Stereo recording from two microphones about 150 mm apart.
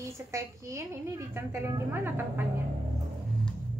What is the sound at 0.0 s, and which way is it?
A woman's voice, 20° right (ahead or behind).